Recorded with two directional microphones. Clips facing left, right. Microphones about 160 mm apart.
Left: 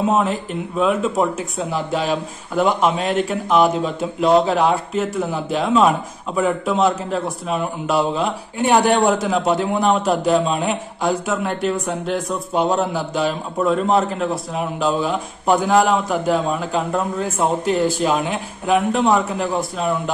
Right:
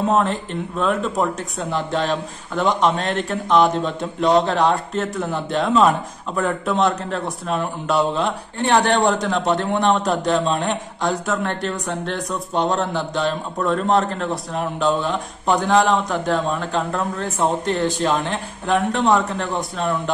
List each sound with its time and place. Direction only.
0.0 s speech: 5° left (ahead or behind)